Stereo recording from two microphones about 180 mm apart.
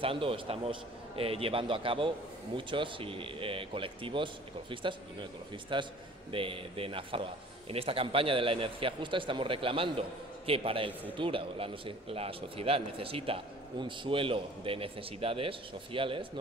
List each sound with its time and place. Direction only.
0.0 s a man's voice: 30° right (ahead or behind)